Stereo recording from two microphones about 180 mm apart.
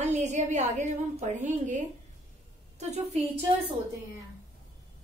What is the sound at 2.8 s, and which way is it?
Speech, 40° right (ahead or behind).